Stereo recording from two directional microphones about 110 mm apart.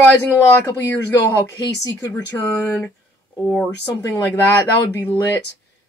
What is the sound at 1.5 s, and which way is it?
Speech, 35° left (ahead or behind).